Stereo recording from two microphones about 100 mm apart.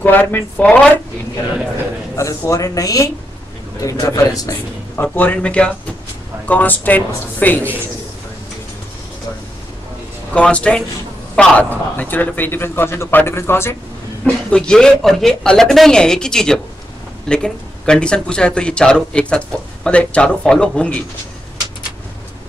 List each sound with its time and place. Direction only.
0.0 s speech: 20° left (ahead or behind)
2.1 s speech: 30° left (ahead or behind)
4.9 s speech: 20° left (ahead or behind)
10.3 s a man's voice: 10° left (ahead or behind)
14.2 s speech: 10° left (ahead or behind)